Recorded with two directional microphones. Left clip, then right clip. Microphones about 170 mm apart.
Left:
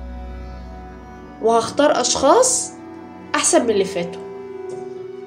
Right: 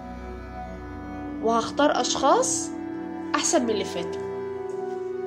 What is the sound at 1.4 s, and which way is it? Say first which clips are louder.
A woman's voice: left 6 dB; 15° right (ahead or behind).